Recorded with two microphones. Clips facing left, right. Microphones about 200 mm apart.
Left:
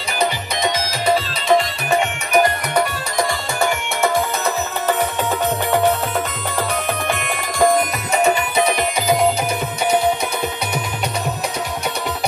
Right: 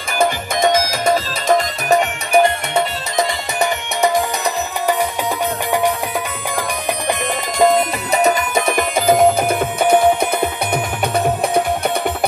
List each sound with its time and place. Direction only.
0.2 s music: 50° right (ahead or behind)
1.9 s music: 30° right (ahead or behind)
7.1 s music: 20° right (ahead or behind)
8.1 s music: 40° right (ahead or behind)